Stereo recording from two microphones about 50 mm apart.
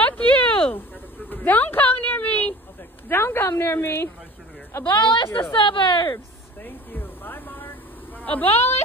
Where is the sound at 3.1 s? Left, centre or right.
Left.